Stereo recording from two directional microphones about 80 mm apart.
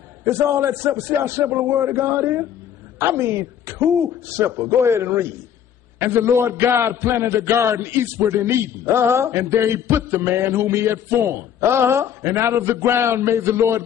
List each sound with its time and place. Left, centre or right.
0.2 s a man's voice: right